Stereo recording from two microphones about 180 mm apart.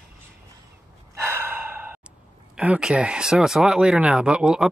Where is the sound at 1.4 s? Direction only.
10° right (ahead or behind).